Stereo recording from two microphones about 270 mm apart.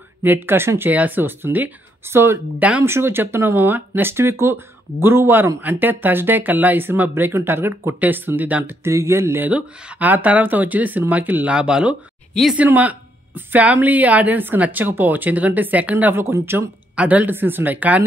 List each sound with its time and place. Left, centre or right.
0.2 s speech: centre